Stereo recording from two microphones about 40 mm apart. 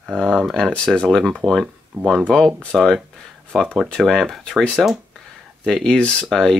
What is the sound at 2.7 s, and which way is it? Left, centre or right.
Speech, centre.